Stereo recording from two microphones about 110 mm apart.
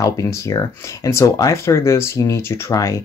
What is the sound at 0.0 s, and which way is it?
Speech, 30° left (ahead or behind).